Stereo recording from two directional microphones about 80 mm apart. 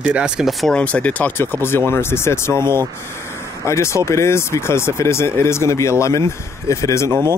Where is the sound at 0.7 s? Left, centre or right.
Centre; by 7.1 s left.